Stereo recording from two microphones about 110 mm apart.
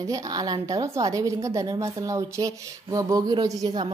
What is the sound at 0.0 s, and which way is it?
A woman's voice, 30° right (ahead or behind).